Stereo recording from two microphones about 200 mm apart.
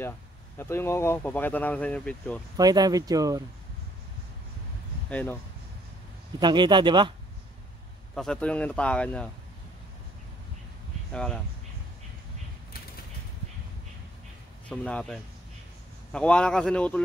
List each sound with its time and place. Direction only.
0.6 s speech: 15° left (ahead or behind)
2.5 s speech: 20° right (ahead or behind)
5.1 s speech: 10° left (ahead or behind)
6.4 s speech: 20° right (ahead or behind)
8.1 s speech: 5° left (ahead or behind)
11.1 s speech: 5° left (ahead or behind)
14.7 s speech: 5° left (ahead or behind)